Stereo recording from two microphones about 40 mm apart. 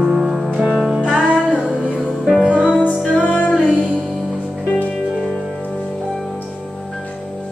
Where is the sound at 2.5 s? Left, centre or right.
Right.